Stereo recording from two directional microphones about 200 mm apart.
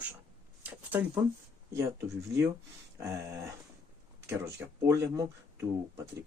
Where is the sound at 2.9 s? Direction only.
15° right (ahead or behind).